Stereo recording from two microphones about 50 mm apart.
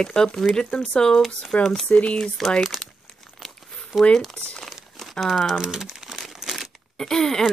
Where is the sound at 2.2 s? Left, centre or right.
Centre.